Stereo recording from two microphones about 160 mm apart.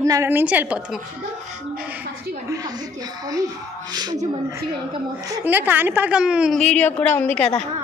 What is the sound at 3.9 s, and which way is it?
Speech, 25° right (ahead or behind).